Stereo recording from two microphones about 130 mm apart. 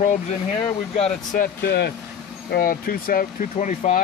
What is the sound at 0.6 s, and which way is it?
Speech, 55° left (ahead or behind).